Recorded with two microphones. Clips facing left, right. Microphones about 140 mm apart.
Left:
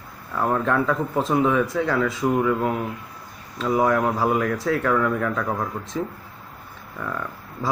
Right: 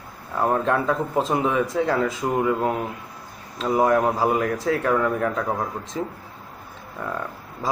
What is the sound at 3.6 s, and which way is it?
Speech, 20° right (ahead or behind).